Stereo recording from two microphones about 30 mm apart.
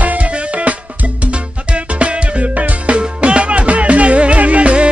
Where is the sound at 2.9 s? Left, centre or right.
Right.